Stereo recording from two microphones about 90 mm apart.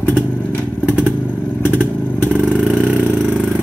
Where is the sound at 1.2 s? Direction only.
15° left (ahead or behind).